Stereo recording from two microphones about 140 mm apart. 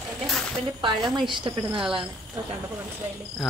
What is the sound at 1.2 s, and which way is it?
Speech, 35° right (ahead or behind).